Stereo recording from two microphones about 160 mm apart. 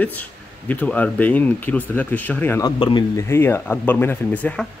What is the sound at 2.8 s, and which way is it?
Speech, 30° left (ahead or behind).